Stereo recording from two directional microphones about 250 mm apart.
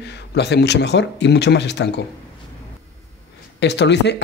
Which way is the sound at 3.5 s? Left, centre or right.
Left.